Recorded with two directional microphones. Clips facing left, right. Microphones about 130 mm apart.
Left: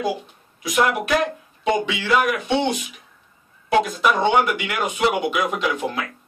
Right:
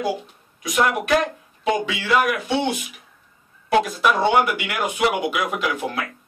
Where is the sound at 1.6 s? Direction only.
Centre (ahead or behind).